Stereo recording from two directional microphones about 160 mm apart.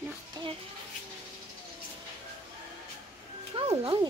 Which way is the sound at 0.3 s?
25° right (ahead or behind).